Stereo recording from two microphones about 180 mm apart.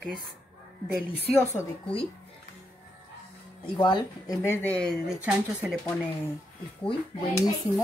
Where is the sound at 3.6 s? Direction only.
25° left (ahead or behind); by 4.9 s 10° left (ahead or behind).